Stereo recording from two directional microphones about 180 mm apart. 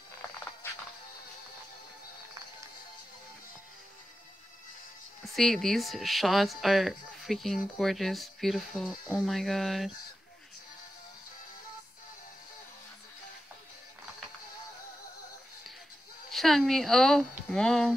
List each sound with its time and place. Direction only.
0.6 s music: 10° left (ahead or behind)
5.3 s speech: centre (ahead or behind)
16.3 s speech: centre (ahead or behind)